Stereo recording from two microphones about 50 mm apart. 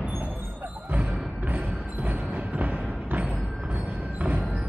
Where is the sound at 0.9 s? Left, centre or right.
Right.